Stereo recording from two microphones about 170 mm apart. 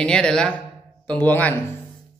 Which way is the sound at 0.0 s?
5° left (ahead or behind).